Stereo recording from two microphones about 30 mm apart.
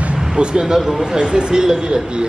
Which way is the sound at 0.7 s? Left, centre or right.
Centre.